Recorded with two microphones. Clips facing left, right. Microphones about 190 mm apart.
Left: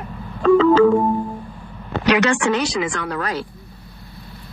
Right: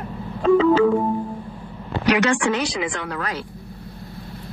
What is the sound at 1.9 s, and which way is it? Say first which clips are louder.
Speech: left 2 dB; 80° left.